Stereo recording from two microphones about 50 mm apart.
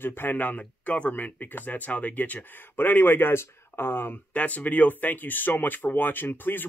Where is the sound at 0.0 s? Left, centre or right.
Left.